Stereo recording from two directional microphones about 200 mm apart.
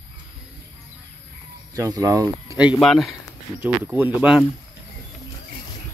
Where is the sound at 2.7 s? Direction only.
Centre (ahead or behind).